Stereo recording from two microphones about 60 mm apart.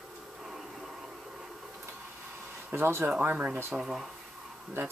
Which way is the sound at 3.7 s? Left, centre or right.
Centre.